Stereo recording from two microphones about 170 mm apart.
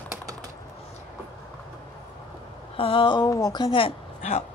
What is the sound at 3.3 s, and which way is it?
Speech, 20° left (ahead or behind).